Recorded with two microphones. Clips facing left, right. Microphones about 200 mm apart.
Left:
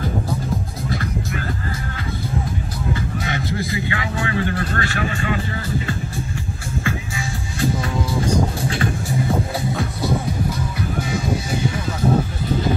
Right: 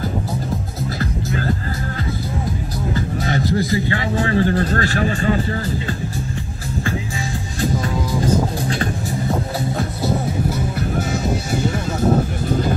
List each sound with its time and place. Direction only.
0.9 s music: 30° right (ahead or behind)
2.9 s music: 40° right (ahead or behind)
11.0 s music: 45° right (ahead or behind)